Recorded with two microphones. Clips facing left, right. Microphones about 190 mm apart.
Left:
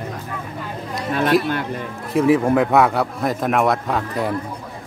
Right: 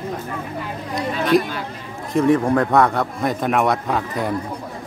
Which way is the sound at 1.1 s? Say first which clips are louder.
Even; 55° left (ahead or behind).